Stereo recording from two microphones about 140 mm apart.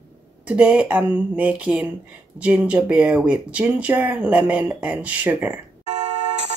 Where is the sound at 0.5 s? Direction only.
10° right (ahead or behind).